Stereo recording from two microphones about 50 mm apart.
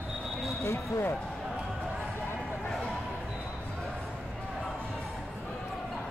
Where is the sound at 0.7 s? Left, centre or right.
Left.